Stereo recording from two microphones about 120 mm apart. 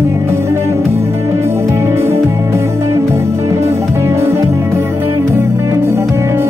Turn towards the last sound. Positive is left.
turn(degrees=-20)  # may be behind; listen again after turning